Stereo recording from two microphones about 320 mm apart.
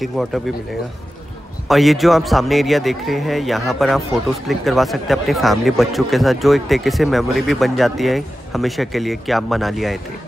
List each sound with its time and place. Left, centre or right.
0.0 s speech: centre
1.7 s speech: centre